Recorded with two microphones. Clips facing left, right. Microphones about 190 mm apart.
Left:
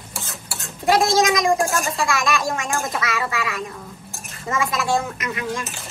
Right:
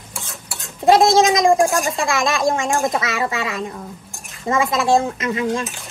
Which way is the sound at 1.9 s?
30° right (ahead or behind).